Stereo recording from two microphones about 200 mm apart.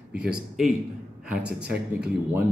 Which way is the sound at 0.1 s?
5° right (ahead or behind).